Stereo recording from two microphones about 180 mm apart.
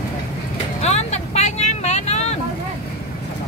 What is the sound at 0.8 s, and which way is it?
Vehicle, 40° left (ahead or behind).